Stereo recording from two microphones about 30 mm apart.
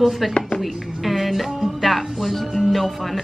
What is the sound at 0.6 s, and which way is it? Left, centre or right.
Music, centre.